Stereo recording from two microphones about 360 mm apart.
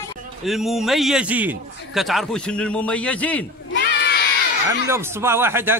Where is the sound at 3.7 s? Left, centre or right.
Left.